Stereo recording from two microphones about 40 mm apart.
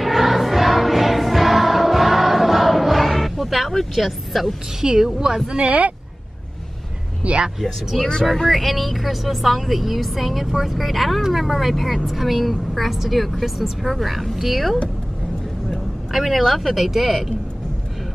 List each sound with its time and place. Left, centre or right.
0.0 s music: centre
3.9 s a woman's voice: centre
4.8 s a woman's voice: centre
5.7 s speech: right
7.2 s speech: right
7.6 s a woman's voice: centre
16.1 s a woman's voice: centre